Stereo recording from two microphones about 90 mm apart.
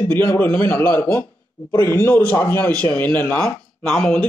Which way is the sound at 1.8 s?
35° left (ahead or behind).